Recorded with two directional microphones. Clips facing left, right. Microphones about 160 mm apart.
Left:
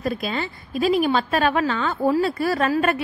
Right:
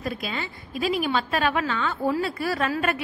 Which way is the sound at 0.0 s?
40° left (ahead or behind).